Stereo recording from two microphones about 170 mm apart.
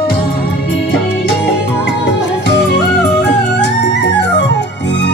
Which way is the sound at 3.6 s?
90° left.